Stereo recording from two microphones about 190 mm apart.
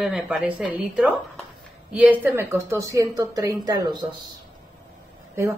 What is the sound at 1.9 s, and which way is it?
A woman's voice, 10° right (ahead or behind).